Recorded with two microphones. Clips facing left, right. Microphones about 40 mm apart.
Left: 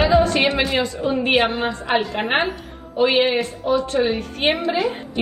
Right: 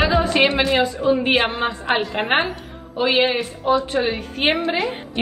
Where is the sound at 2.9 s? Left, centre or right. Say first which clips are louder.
Left 1 dB; centre.